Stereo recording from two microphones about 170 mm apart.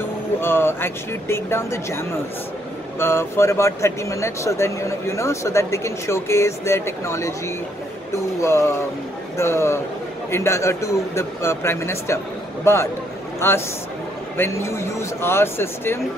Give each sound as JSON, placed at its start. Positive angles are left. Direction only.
{"t": 0.4, "sound": "speech", "side_deg": 15}